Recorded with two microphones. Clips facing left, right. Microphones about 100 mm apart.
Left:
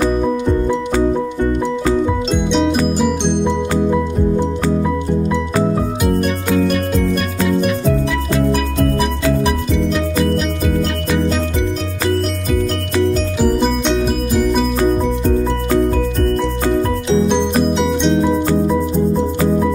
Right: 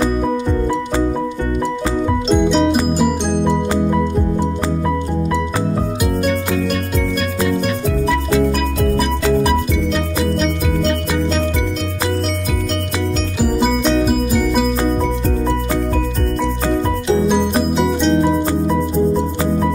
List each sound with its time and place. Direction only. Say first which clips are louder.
2.2 s music: right 2 dB; centre (ahead or behind)
17.1 s music: even; 5° right (ahead or behind)